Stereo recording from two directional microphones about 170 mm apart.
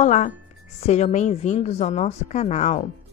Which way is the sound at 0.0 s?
45° left (ahead or behind).